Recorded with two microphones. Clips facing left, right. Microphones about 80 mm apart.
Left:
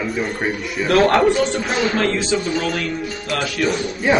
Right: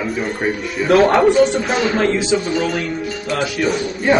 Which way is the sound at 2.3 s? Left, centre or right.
Centre.